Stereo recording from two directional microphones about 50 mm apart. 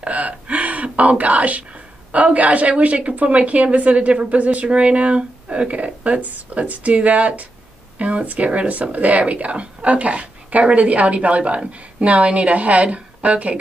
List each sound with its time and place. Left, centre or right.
0.0 s gasp: right
2.8 s speech: right